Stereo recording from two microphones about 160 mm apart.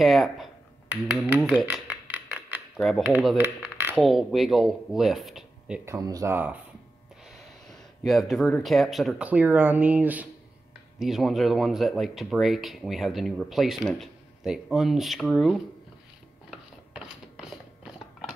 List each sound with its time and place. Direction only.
0.0 s speech: centre (ahead or behind)
1.0 s speech: 10° right (ahead or behind)
1.6 s a sound: 10° right (ahead or behind)
3.1 s speech: centre (ahead or behind)
3.3 s a sound: 10° right (ahead or behind)
3.9 s speech: centre (ahead or behind)
5.9 s speech: 20° right (ahead or behind)
7.2 s speech: centre (ahead or behind)
16.4 s a sound: 5° right (ahead or behind)